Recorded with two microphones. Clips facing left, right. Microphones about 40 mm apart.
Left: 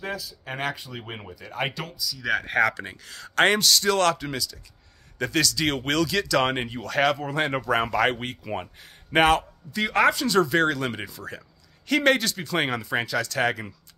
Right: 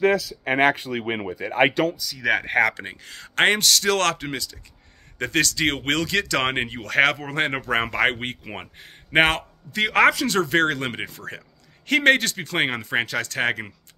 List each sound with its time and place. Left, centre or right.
0.0 s speech: right
1.3 s speech: right
2.4 s speech: right
3.5 s speech: right
4.2 s speech: right
7.5 s speech: right
9.7 s speech: right
10.2 s speech: right
10.7 s speech: right